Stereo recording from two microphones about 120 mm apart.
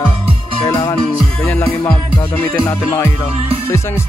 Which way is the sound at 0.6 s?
35° left (ahead or behind).